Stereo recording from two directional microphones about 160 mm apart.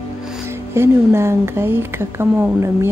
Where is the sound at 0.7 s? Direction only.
15° right (ahead or behind).